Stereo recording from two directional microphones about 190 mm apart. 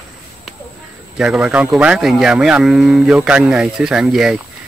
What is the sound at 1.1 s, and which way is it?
Speech, 5° right (ahead or behind).